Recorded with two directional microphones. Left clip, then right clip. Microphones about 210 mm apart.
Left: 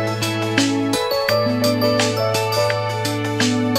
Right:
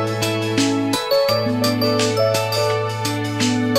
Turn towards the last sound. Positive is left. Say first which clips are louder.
# left 1 dB
turn(degrees=0)  # may be behind; listen again after turning